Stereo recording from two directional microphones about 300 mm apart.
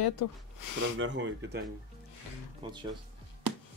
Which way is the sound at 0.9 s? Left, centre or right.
Right.